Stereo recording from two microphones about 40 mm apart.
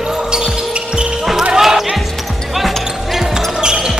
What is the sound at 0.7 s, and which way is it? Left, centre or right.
Basketball bounce, right.